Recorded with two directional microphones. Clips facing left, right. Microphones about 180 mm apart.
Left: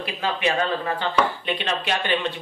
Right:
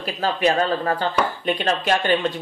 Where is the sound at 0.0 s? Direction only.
40° right (ahead or behind).